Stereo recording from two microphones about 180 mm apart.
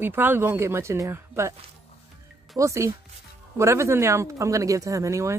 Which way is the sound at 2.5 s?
15° right (ahead or behind).